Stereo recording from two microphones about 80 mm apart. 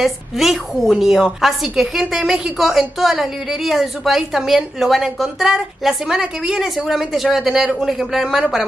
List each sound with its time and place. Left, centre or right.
0.0 s a woman's voice: centre